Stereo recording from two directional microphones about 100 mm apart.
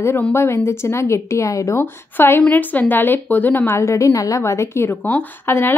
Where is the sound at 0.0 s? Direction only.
25° left (ahead or behind).